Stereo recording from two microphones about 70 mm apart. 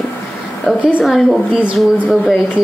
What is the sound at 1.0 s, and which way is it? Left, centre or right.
A woman's voice, centre.